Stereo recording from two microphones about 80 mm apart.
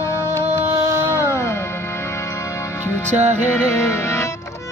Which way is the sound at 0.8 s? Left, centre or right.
Right.